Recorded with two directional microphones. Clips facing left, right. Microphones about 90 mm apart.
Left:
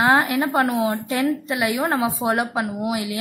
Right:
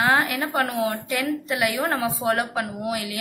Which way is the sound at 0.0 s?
25° left (ahead or behind).